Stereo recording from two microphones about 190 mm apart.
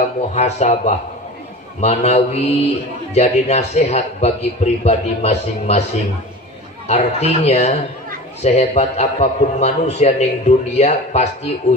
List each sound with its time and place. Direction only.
0.0 s a man's voice: 35° left (ahead or behind)
6.9 s a man's voice: 35° left (ahead or behind)